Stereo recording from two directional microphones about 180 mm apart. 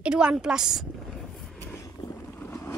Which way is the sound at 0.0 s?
5° right (ahead or behind).